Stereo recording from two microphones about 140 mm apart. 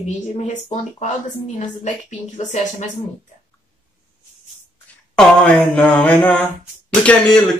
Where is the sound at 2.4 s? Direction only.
60° left (ahead or behind).